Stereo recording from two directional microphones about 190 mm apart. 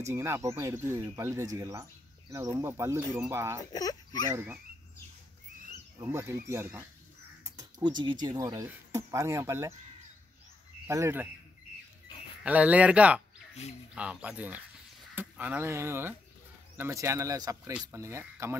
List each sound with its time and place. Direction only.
0.0 s speech: 15° right (ahead or behind)
3.7 s speech: 20° left (ahead or behind)
4.3 s speech: 10° right (ahead or behind)
5.9 s speech: 15° right (ahead or behind)
7.4 s speech: 20° right (ahead or behind)
10.9 s speech: 15° right (ahead or behind)
12.4 s speech: 5° right (ahead or behind)